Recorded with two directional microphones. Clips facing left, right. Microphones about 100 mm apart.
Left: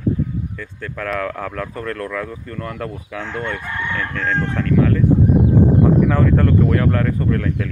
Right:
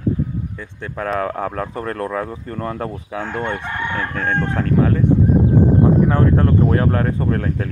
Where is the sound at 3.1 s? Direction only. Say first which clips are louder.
Right 2 dB; 50° right (ahead or behind).